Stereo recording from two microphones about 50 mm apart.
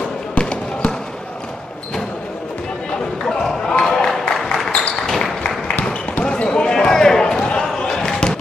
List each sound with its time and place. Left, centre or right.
0.4 s basketball bounce: left
3.3 s basketball bounce: centre
3.8 s music: centre
5.0 s a sound: centre
5.9 s basketball bounce: centre